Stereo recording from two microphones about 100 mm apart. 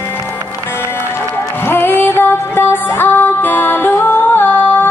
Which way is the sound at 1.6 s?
20° left (ahead or behind).